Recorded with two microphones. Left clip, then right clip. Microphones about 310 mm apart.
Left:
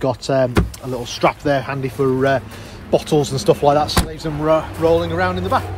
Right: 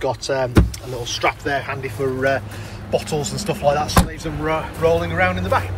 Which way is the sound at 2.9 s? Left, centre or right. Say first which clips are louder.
Left 5 dB; left.